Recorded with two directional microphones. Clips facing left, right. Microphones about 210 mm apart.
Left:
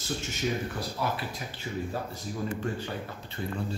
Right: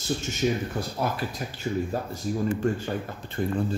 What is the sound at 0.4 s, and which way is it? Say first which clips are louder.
Speech: right 5 dB; 45° right (ahead or behind).